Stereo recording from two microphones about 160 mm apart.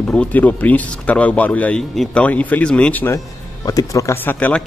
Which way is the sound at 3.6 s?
20° left (ahead or behind).